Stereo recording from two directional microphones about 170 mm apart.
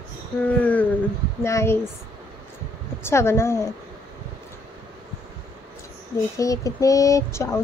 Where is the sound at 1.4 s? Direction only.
15° left (ahead or behind).